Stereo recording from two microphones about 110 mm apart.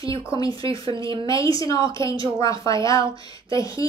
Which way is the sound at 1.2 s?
30° left (ahead or behind).